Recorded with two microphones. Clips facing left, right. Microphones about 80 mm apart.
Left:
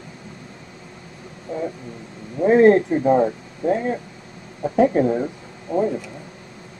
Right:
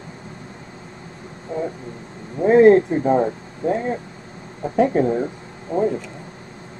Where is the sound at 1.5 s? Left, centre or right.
Right.